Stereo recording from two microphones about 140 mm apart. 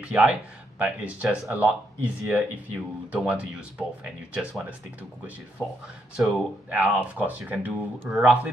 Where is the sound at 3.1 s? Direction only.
10° right (ahead or behind).